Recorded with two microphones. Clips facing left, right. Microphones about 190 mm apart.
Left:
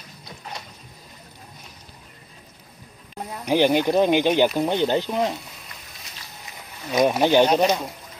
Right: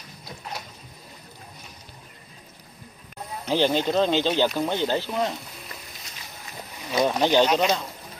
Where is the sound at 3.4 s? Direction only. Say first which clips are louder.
Left 4 dB; 15° left (ahead or behind).